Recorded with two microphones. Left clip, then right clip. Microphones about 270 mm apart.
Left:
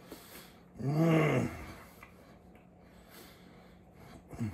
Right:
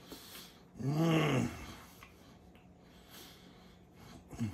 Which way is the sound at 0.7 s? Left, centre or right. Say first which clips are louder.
Left 3 dB; centre.